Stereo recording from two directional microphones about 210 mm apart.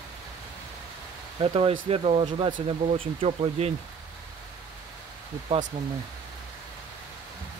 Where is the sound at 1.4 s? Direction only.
25° right (ahead or behind).